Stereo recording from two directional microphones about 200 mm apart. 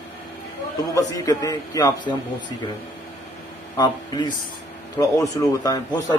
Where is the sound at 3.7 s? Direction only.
20° left (ahead or behind).